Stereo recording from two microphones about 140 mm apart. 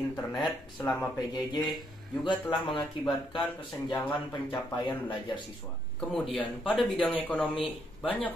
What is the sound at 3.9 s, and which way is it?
Speech, 30° left (ahead or behind).